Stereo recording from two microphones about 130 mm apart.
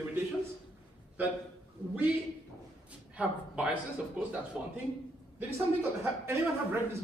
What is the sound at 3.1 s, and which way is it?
Speech, 10° right (ahead or behind).